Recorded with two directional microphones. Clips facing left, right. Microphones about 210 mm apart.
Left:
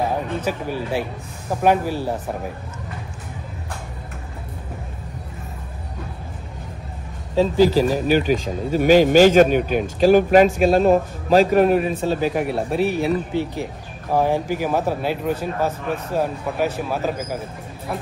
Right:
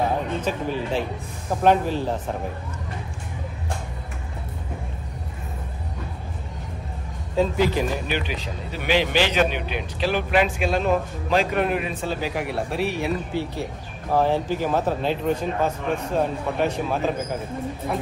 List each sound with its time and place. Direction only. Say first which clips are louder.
0.4 s speech: left 1 dB; 10° left (ahead or behind)
7.3 s a man's voice: left 5 dB; 35° left (ahead or behind)
12.4 s speech: left 5 dB; 25° left (ahead or behind); by 17.4 s 5° left (ahead or behind)